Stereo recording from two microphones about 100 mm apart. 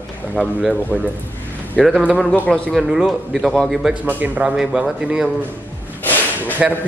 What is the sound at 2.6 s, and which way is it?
A man's voice, 5° right (ahead or behind).